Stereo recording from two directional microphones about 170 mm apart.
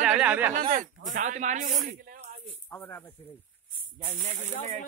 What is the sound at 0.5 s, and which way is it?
Speech, 45° right (ahead or behind).